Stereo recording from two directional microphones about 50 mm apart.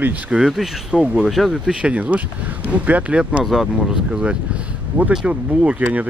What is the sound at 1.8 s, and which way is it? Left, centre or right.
Speech, right.